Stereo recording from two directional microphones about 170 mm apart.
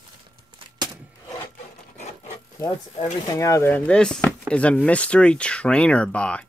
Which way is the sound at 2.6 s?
20° left (ahead or behind).